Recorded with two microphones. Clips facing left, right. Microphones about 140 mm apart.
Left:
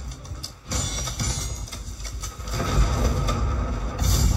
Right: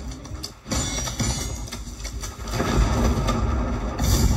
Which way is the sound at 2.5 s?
60° right (ahead or behind).